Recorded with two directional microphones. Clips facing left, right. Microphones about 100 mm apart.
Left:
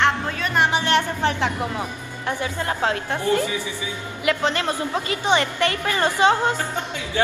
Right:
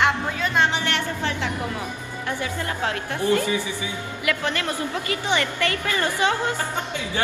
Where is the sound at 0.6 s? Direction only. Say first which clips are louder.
Left 2 dB; 15° left (ahead or behind).